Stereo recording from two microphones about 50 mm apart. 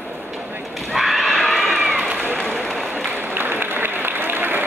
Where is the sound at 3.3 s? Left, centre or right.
Right.